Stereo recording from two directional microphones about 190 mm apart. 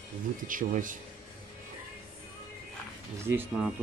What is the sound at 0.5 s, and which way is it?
Speech, 45° right (ahead or behind).